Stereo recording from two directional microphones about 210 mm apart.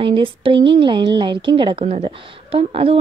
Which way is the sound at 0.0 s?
25° right (ahead or behind).